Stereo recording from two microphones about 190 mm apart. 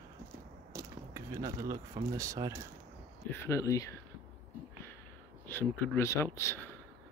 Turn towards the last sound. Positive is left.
turn(degrees=15)  # may be behind; listen again after turning